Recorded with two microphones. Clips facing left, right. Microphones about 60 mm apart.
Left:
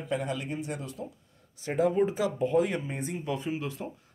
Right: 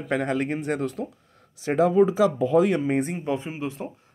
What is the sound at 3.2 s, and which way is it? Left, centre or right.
Speech, right.